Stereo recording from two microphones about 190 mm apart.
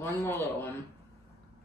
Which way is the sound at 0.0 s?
10° left (ahead or behind).